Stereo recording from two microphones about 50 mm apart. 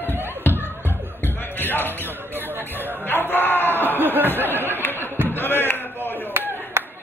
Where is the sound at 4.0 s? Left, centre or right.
Right.